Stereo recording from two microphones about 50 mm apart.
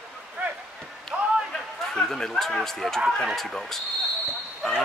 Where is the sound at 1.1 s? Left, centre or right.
Right.